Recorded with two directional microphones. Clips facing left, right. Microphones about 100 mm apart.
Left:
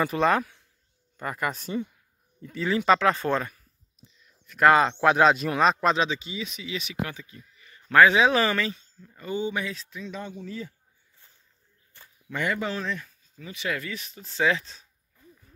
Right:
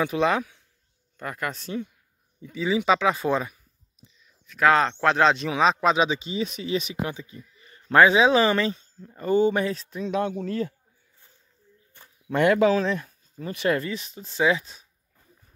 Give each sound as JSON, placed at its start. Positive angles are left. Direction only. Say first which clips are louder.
{"t": 0.0, "sound": "speech", "louder": "even", "side_deg": 0}
{"t": 2.4, "sound": "speech", "louder": "right 1 dB", "side_deg": -5}
{"t": 4.5, "sound": "speech", "louder": "left 1 dB", "side_deg": 5}
{"t": 5.9, "sound": "speech", "louder": "right 3 dB", "side_deg": -20}
{"t": 6.3, "sound": "speech", "louder": "right 7 dB", "side_deg": -40}
{"t": 10.0, "sound": "speech", "louder": "right 11 dB", "side_deg": -65}
{"t": 12.3, "sound": "speech", "louder": "right 10 dB", "side_deg": -70}
{"t": 12.9, "sound": "speech", "louder": "right 6 dB", "side_deg": -50}
{"t": 13.8, "sound": "speech", "louder": "right 5 dB", "side_deg": -25}